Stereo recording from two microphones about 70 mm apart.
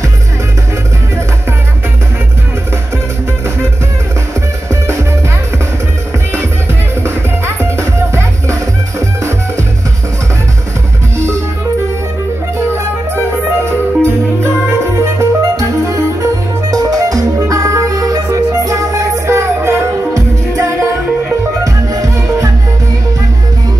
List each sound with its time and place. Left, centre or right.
7.0 s music: right
13.7 s music: right
16.7 s music: right
21.9 s music: right